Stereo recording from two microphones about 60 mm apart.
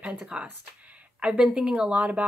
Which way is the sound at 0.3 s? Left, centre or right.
Centre.